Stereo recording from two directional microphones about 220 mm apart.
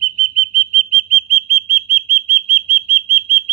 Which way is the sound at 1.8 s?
35° right (ahead or behind).